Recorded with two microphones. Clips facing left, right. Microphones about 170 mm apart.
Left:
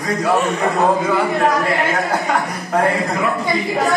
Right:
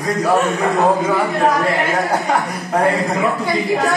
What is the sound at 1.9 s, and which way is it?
Speech, 20° right (ahead or behind).